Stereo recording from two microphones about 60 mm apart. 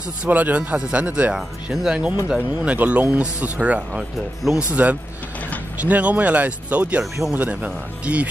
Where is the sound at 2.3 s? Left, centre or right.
Right.